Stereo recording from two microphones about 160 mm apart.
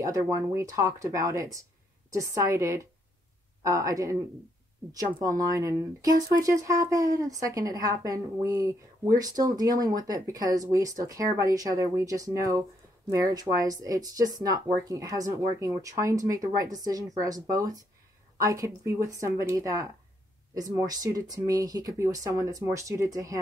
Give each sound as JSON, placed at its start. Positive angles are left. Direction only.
{"t": 0.0, "sound": "speech", "side_deg": -20}
{"t": 5.4, "sound": "speech", "side_deg": -20}